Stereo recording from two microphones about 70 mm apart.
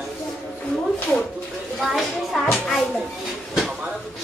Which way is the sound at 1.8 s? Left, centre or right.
Centre.